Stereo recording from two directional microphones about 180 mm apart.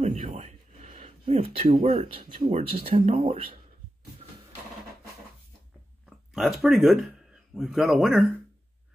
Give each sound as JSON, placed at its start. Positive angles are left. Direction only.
{"t": 0.3, "sound": "speech", "side_deg": -35}
{"t": 6.0, "sound": "a man's voice", "side_deg": 0}